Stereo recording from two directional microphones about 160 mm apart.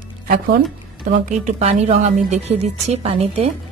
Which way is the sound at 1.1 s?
50° right (ahead or behind).